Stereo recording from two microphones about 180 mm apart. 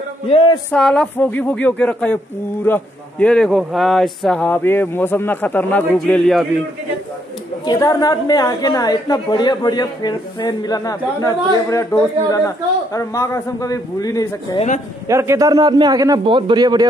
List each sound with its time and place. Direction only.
0.3 s a woman's voice: 25° left (ahead or behind)
0.7 s a man's voice: 5° left (ahead or behind)
7.6 s a woman's voice: 20° left (ahead or behind)
15.0 s a man's voice: 15° right (ahead or behind)